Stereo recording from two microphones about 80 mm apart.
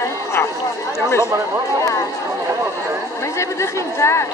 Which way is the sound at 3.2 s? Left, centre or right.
Left.